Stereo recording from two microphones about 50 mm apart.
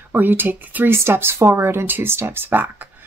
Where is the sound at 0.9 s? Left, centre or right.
Right.